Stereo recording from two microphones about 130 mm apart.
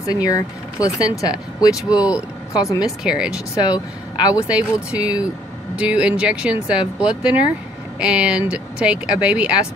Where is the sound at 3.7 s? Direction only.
30° left (ahead or behind).